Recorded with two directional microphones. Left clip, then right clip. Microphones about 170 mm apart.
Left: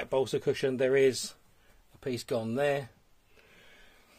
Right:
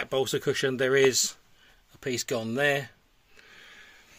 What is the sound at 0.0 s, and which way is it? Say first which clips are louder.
Speech: right 2 dB; 10° right (ahead or behind).